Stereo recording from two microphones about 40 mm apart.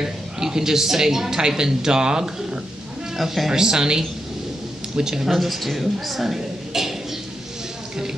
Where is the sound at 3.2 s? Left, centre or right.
Centre.